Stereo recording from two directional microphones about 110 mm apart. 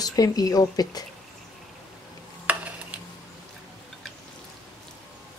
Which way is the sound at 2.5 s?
15° right (ahead or behind).